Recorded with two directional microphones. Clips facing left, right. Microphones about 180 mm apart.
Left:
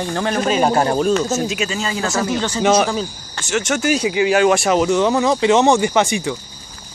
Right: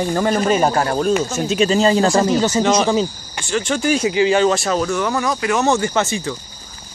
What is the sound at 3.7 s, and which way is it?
Speech, 5° left (ahead or behind).